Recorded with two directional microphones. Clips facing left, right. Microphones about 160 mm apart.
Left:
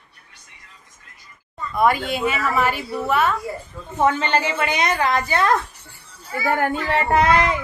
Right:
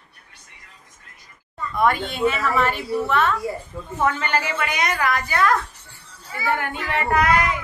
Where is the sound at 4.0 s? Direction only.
25° left (ahead or behind).